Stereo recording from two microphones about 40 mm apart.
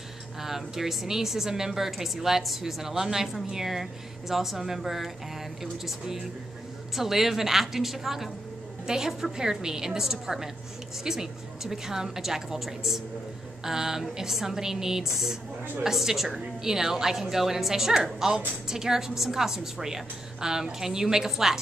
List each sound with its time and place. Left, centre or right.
0.4 s a woman's voice: centre